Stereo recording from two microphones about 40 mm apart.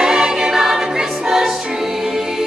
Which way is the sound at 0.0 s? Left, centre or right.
Centre.